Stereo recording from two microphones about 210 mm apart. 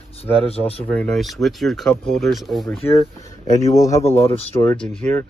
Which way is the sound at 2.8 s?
30° left (ahead or behind).